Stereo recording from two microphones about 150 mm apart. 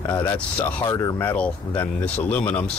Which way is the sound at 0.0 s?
25° left (ahead or behind).